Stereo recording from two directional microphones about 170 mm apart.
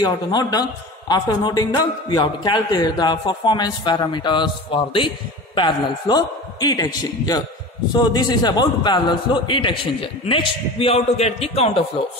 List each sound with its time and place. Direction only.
0.0 s a man's voice: 25° left (ahead or behind)